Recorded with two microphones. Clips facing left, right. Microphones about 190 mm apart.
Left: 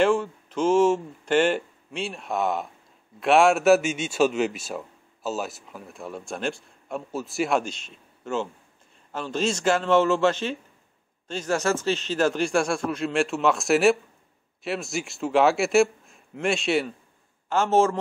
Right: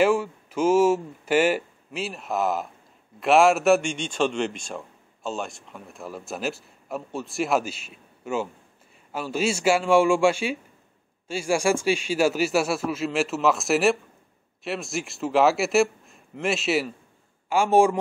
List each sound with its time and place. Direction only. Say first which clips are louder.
0.0 s a man's voice: even; 10° right (ahead or behind)